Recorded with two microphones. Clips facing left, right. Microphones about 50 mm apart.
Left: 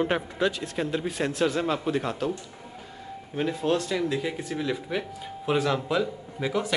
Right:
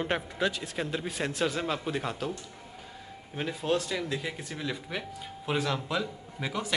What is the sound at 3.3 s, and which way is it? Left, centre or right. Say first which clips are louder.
Speech: left 4 dB; centre.